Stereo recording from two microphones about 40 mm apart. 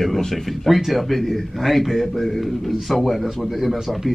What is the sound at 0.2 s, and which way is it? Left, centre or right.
Speech, centre.